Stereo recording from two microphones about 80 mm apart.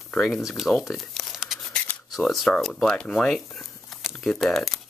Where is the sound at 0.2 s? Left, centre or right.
Centre.